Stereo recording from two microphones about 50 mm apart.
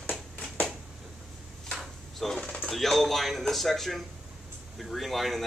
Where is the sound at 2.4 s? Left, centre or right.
Left.